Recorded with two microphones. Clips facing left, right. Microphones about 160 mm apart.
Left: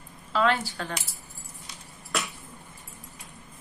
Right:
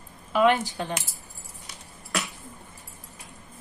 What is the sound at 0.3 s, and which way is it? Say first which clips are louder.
Speech: right 4 dB; 15° right (ahead or behind).